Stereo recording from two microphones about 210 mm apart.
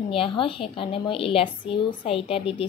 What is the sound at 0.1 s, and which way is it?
Speech, 25° left (ahead or behind).